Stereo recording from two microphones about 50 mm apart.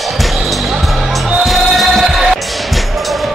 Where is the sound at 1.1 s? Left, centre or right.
Centre.